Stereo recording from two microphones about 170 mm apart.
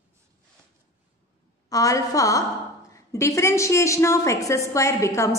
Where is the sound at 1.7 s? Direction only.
20° left (ahead or behind).